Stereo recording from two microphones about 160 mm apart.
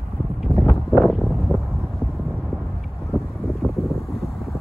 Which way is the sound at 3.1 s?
Centre (ahead or behind).